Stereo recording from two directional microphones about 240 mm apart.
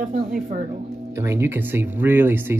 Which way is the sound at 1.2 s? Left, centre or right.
Centre.